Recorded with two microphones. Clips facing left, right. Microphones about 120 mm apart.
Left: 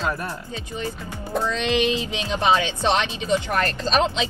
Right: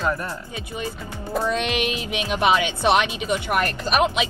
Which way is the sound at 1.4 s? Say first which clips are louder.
Left 3 dB; 15° right (ahead or behind).